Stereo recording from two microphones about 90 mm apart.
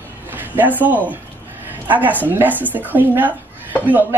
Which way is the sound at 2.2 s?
20° right (ahead or behind).